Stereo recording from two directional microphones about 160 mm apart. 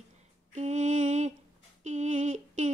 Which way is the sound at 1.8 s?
50° right (ahead or behind).